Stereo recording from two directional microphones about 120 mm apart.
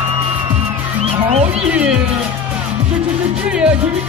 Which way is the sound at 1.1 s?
50° right (ahead or behind).